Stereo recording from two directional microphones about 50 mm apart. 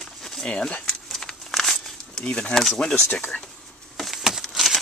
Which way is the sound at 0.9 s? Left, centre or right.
Centre.